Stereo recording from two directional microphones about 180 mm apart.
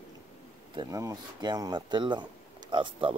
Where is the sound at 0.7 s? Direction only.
20° right (ahead or behind).